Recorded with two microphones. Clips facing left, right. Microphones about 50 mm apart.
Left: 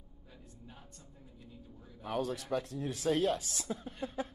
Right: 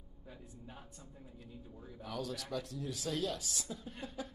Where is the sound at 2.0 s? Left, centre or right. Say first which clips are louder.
Left 6 dB; left.